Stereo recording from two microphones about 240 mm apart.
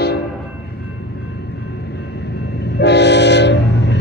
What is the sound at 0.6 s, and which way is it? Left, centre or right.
Vehicle, left.